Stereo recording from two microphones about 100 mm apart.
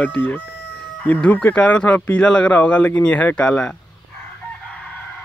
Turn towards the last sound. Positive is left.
turn(degrees=10)  # may be behind; listen again after turning